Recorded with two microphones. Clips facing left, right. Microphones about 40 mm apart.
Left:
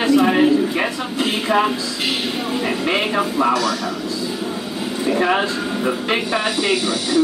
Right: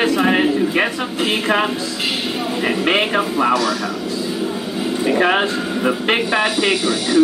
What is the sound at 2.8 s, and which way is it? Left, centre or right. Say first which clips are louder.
Speech: right 4 dB; right.